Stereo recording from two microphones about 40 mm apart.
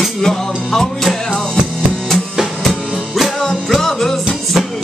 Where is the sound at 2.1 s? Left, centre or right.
Centre.